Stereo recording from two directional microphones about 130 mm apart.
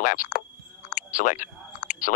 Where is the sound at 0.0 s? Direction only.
90° left.